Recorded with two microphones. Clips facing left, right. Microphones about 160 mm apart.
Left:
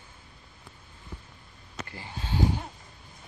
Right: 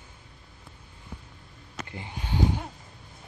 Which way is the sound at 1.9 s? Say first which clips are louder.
Right 1 dB; 20° right (ahead or behind).